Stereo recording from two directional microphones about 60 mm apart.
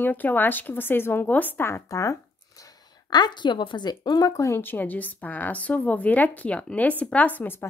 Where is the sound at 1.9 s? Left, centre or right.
Left.